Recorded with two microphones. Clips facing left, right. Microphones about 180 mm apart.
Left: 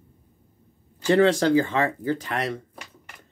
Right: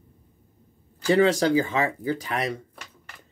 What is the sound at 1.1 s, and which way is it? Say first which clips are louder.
Speech: left 1 dB; 15° right (ahead or behind).